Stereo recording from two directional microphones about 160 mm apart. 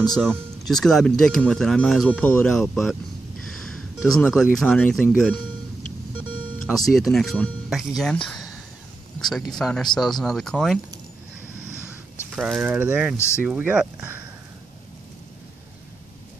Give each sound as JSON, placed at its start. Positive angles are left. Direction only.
{"t": 0.1, "sound": "speech", "side_deg": 0}
{"t": 6.9, "sound": "speech", "side_deg": 0}
{"t": 12.4, "sound": "speech", "side_deg": -5}